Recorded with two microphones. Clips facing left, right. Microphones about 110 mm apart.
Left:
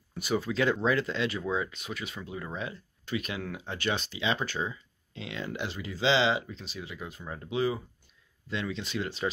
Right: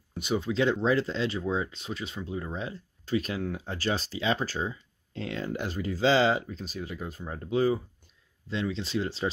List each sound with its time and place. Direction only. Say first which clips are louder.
0.2 s speech: right 1 dB; 20° right (ahead or behind); by 7.8 s 40° right (ahead or behind)
8.5 s speech: right 3 dB; 30° right (ahead or behind)